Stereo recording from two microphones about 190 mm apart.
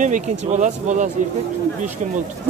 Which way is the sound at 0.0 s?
40° right (ahead or behind).